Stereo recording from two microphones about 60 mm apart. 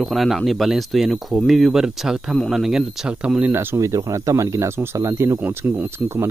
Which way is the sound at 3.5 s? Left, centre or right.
Right.